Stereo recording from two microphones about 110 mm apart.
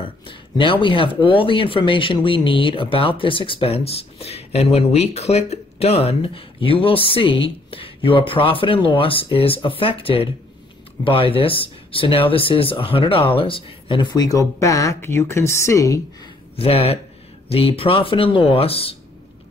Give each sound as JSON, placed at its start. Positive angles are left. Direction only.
{"t": 0.0, "sound": "a woman's voice", "side_deg": 50}
{"t": 16.5, "sound": "speech", "side_deg": 65}